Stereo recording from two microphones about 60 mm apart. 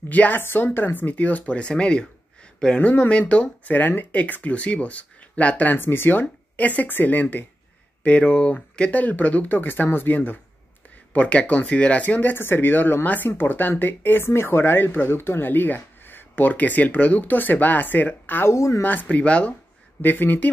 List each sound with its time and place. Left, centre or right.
0.1 s speech: left
0.4 s speech: left; by 3.4 s centre
3.6 s speech: left
5.8 s speech: left
18.5 s speech: left
18.8 s speech: left
20.0 s speech: left